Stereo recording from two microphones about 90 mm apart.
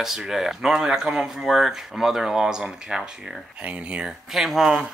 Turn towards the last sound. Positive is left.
turn(degrees=-5)  # may be behind; listen again after turning